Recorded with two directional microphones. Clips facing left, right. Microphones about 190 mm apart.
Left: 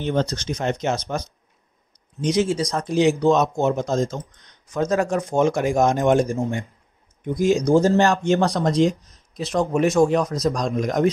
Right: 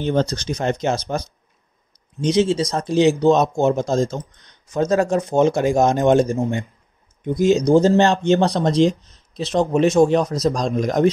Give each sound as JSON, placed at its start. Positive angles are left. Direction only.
{"t": 0.0, "sound": "speech", "side_deg": -35}